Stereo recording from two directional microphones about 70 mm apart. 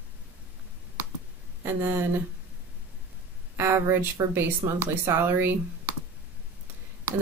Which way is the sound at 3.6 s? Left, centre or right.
Right.